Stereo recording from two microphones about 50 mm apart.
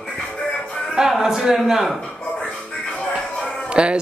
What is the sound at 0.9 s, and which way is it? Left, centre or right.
A man's voice, centre.